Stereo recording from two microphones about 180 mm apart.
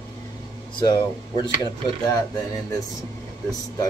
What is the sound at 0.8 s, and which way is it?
Speech, 25° left (ahead or behind).